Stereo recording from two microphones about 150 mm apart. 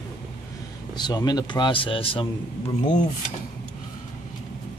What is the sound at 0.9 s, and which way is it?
Speech, 30° left (ahead or behind).